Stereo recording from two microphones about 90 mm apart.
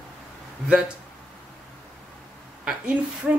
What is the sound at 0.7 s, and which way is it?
Speech, 10° right (ahead or behind).